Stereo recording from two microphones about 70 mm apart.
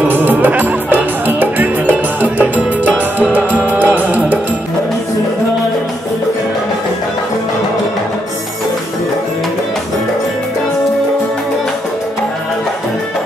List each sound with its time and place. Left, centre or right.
0.1 s music: right